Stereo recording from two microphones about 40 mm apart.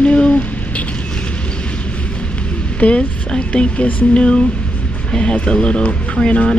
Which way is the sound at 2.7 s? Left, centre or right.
Left.